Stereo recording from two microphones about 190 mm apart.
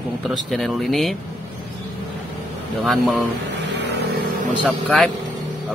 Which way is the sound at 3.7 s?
60° right (ahead or behind).